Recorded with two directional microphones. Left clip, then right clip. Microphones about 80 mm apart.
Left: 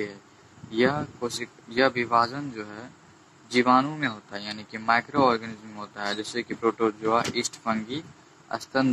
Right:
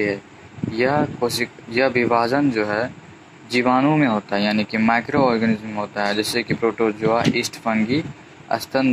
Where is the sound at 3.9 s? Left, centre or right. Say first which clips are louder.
Right 12 dB; right.